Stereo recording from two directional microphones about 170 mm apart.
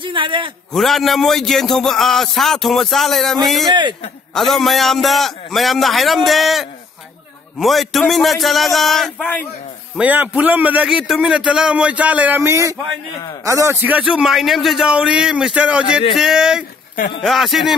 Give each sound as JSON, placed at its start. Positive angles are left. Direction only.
{"t": 0.0, "sound": "a man's voice", "side_deg": -30}
{"t": 0.7, "sound": "a man's voice", "side_deg": 0}
{"t": 9.9, "sound": "a man's voice", "side_deg": -10}